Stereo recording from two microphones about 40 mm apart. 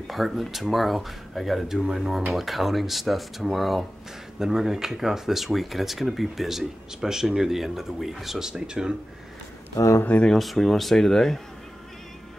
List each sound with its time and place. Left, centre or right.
0.0 s speech: centre
8.5 s speech: centre
10.2 s speech: centre